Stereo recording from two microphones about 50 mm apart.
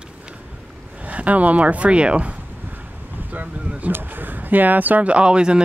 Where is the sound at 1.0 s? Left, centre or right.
Right.